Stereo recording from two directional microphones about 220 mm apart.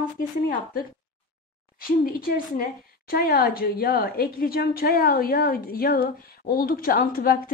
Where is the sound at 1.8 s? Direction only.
40° left (ahead or behind).